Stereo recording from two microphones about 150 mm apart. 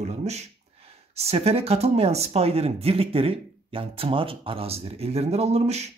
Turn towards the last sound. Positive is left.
turn(degrees=-45)  # may be behind; listen again after turning